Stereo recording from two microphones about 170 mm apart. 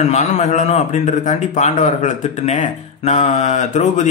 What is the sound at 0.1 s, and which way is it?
Speech, 45° left (ahead or behind).